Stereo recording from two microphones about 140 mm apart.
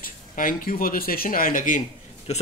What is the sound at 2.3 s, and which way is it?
Speech, 55° left (ahead or behind).